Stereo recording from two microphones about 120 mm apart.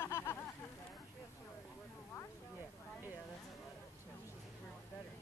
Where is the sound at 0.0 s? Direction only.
20° left (ahead or behind).